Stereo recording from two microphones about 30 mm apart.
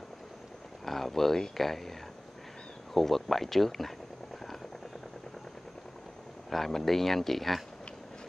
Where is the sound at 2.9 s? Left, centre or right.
Centre.